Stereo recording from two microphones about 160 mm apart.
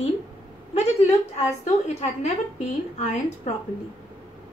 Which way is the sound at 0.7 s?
40° left (ahead or behind).